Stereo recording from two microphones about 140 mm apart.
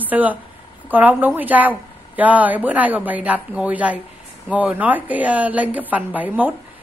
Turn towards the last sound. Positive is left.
turn(degrees=-10)  # may be behind; listen again after turning